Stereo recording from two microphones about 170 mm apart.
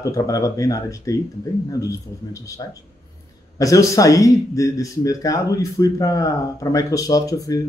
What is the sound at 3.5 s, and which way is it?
Speech, 20° left (ahead or behind).